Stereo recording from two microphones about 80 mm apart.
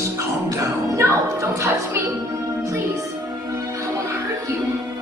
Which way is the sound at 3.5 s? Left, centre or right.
Right.